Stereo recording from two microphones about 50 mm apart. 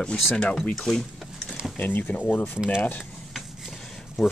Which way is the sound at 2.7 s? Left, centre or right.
Left.